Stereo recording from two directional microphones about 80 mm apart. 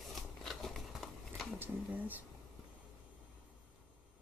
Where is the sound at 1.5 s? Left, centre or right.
Right.